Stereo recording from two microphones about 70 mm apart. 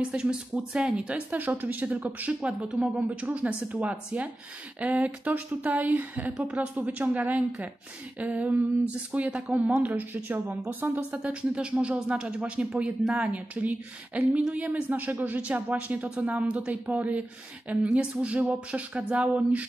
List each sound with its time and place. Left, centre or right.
0.1 s speech: centre
1.3 s speech: right